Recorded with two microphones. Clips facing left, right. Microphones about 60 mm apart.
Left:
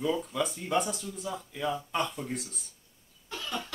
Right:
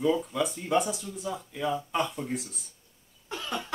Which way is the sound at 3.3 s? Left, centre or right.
Centre.